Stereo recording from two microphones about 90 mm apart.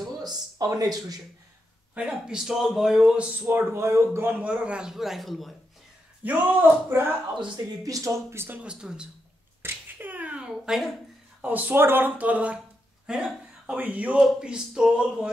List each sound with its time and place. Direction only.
0.2 s speech: 45° right (ahead or behind)
2.0 s speech: 10° right (ahead or behind)
3.4 s speech: 20° right (ahead or behind)
4.3 s speech: 15° right (ahead or behind)
6.2 s speech: 20° right (ahead or behind)
7.3 s speech: 60° right (ahead or behind)
7.8 s speech: 35° right (ahead or behind)
8.5 s speech: 10° right (ahead or behind)
9.6 s slap: 25° right (ahead or behind)
10.5 s a sound: 5° right (ahead or behind)
11.4 s speech: 20° right (ahead or behind)
13.0 s a sound: 5° right (ahead or behind)
13.7 s speech: 15° right (ahead or behind)